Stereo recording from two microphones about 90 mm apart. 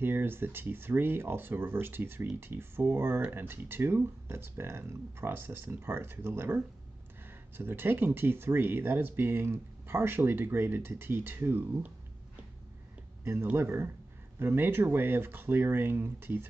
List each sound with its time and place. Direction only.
0.0 s speech: 25° right (ahead or behind)
13.2 s speech: 25° right (ahead or behind)